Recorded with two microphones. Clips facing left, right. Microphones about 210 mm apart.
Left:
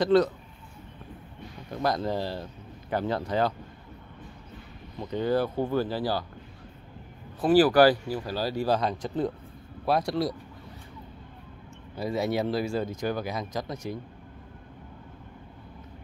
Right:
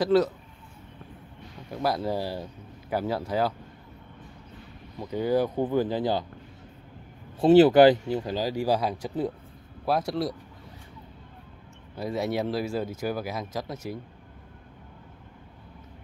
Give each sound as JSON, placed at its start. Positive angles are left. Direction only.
{"t": 0.0, "sound": "speech", "side_deg": -5}
{"t": 1.7, "sound": "speech", "side_deg": -5}
{"t": 4.9, "sound": "speech", "side_deg": -10}
{"t": 7.3, "sound": "speech", "side_deg": -25}
{"t": 11.9, "sound": "speech", "side_deg": 0}